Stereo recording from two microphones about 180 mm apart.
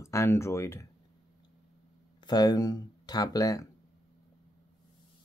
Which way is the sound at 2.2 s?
20° left (ahead or behind).